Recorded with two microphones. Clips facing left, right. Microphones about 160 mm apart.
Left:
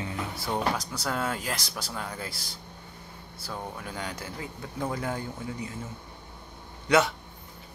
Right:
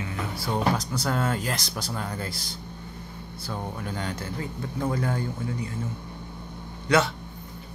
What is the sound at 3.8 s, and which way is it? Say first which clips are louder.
Speech: right 4 dB; 5° left (ahead or behind).